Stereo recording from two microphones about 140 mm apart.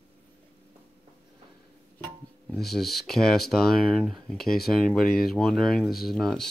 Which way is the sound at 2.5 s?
Centre (ahead or behind).